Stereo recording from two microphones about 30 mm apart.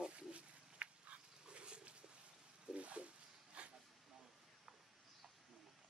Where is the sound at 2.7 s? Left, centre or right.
Right.